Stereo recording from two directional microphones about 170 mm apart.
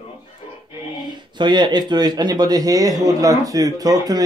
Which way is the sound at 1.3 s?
25° right (ahead or behind).